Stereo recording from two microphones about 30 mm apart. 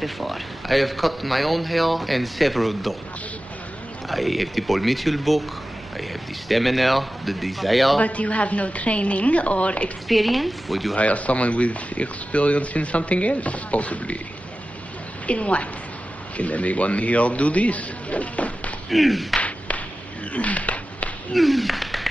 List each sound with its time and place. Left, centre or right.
0.0 s a man's voice: centre
4.1 s a man's voice: centre
6.5 s a man's voice: centre
8.0 s speech: left
10.0 s a man's voice: centre
11.0 s speech: left
15.2 s speech: left
18.9 s a man's voice: centre
20.3 s a sound: left
21.3 s speech: centre